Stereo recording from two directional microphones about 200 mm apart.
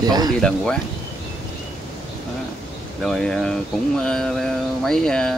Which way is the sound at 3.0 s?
5° left (ahead or behind).